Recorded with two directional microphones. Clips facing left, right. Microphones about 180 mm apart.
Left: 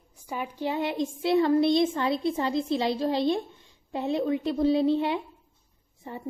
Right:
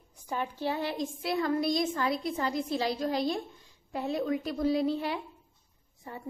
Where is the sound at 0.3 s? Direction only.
15° left (ahead or behind).